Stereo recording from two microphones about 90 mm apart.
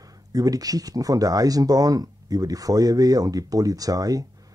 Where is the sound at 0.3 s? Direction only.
45° right (ahead or behind).